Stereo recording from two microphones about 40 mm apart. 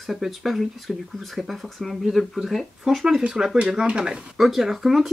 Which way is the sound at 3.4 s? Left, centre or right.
Centre.